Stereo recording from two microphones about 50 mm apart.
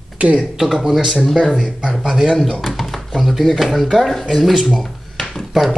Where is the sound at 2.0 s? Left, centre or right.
Centre.